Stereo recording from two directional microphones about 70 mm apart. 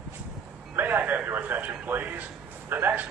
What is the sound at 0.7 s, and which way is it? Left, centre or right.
A man's voice, right.